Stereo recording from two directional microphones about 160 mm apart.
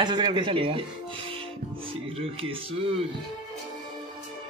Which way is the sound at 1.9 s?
35° right (ahead or behind).